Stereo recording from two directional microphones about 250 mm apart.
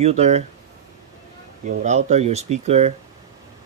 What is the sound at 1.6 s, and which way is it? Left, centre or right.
Speech, right.